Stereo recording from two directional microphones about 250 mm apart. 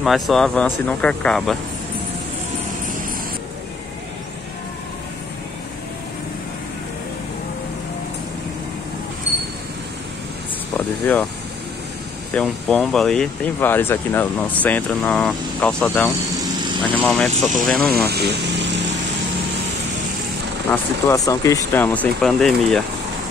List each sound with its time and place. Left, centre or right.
0.0 s speech: centre
10.8 s speech: centre
12.4 s speech: centre
18.0 s speech: right
20.7 s speech: centre